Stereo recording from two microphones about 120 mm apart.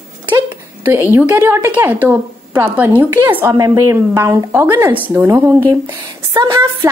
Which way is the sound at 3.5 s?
25° right (ahead or behind).